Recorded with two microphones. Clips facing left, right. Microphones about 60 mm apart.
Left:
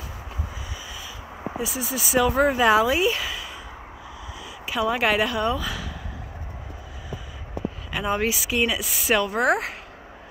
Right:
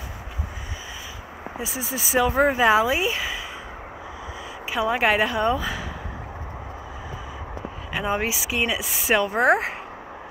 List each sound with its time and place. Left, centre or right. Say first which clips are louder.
1.6 s speech: left 1 dB; right
4.6 s speech: right 1 dB; right
7.9 s speech: even; centre